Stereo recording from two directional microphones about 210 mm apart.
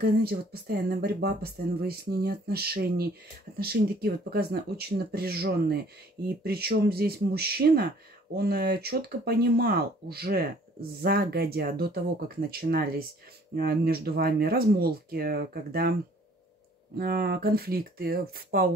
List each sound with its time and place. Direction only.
0.0 s speech: 50° right (ahead or behind)